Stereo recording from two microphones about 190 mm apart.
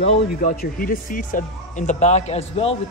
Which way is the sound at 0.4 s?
50° left (ahead or behind).